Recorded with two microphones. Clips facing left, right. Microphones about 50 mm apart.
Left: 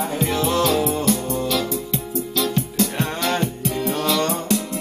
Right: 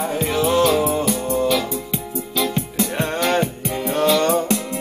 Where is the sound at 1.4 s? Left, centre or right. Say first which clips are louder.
Right 3 dB; centre.